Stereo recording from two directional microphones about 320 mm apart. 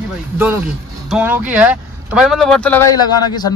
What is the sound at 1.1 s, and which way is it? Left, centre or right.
Speech, centre.